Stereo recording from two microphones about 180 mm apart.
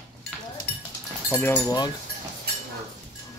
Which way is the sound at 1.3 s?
10° left (ahead or behind).